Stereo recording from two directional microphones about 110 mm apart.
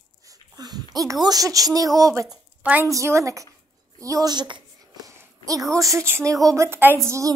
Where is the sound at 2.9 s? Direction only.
30° right (ahead or behind).